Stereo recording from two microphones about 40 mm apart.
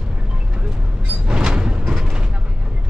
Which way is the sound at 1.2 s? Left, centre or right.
Centre.